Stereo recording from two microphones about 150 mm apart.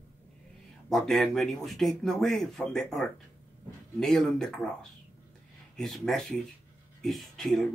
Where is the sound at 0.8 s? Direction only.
Centre (ahead or behind).